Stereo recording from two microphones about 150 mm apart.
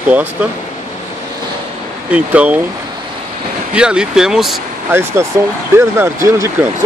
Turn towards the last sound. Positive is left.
turn(degrees=-20)  # may be behind; listen again after turning